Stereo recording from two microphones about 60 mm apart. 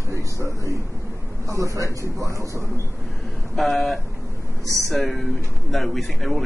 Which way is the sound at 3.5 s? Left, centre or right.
Centre.